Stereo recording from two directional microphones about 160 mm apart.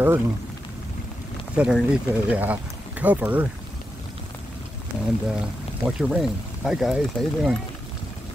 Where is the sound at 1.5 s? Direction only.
5° right (ahead or behind).